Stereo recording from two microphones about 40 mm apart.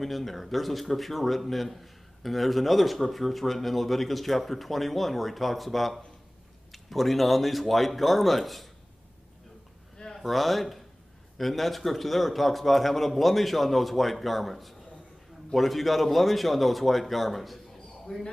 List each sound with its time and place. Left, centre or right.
0.0 s a man's voice: centre
10.1 s a man's voice: centre
18.0 s speech: centre